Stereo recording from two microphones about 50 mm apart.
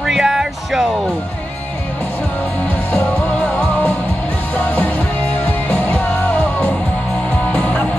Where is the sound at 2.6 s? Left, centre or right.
Left.